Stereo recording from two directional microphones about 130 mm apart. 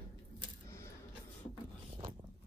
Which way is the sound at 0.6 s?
25° left (ahead or behind).